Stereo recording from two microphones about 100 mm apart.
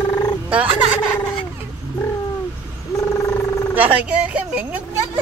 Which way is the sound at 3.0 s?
30° left (ahead or behind).